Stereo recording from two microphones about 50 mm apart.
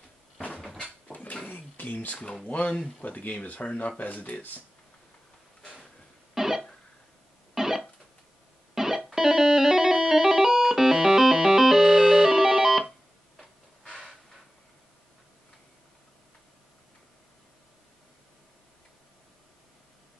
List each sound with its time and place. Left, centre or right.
1.1 s dog: left
1.5 s a sound: left
2.2 s speech: left
6.3 s cough: centre
7.5 s music: centre